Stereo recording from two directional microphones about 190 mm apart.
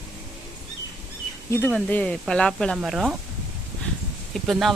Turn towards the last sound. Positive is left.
turn(degrees=0)  # may be behind; listen again after turning